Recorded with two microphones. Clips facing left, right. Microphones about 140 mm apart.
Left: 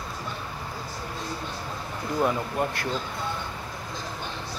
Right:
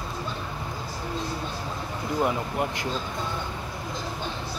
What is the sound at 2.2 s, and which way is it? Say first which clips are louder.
Speech: left 1 dB; 15° right (ahead or behind).